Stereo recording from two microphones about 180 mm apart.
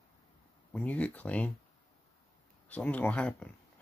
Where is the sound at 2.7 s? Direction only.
10° left (ahead or behind).